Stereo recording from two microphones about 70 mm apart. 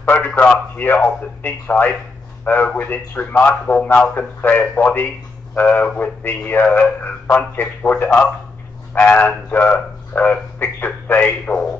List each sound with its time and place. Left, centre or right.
0.1 s a man's voice: left